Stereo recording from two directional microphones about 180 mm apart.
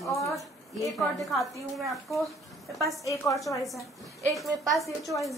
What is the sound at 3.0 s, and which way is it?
Speech, 15° left (ahead or behind).